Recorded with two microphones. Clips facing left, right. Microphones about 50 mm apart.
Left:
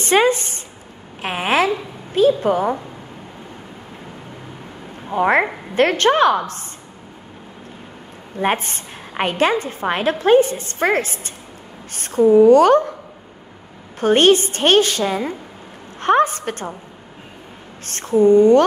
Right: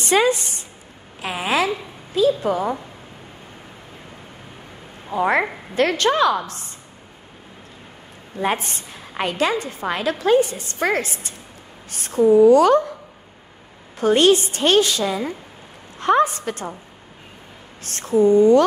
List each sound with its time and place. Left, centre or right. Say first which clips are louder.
0.0 s a sound: left 2 dB; left
1.2 s a woman's voice: left 3 dB; left
5.1 s a woman's voice: left 3 dB; left
8.4 s a woman's voice: left 3 dB; left
13.9 s a woman's voice: left 2 dB; left
18.2 s a woman's voice: left 2 dB; left